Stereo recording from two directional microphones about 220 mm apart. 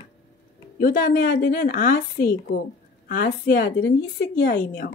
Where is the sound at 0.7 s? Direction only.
40° left (ahead or behind).